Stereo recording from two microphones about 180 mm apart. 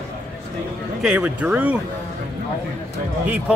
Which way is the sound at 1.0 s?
5° right (ahead or behind).